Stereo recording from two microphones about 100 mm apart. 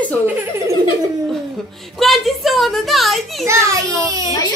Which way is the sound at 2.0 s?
Centre (ahead or behind).